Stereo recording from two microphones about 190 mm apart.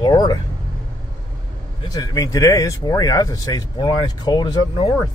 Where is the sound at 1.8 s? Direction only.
20° left (ahead or behind).